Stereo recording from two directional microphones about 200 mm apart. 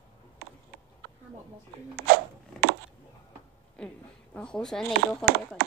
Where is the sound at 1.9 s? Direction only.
55° right (ahead or behind).